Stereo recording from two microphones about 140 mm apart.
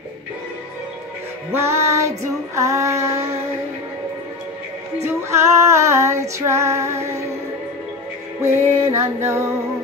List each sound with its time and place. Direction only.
1.5 s female singing: 20° right (ahead or behind)
5.3 s female singing: 20° right (ahead or behind)
8.4 s music: 20° right (ahead or behind)